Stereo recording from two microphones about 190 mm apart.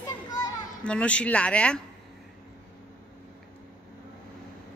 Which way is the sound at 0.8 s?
5° left (ahead or behind).